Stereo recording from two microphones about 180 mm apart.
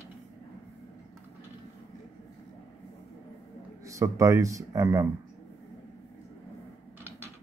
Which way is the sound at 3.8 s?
15° right (ahead or behind).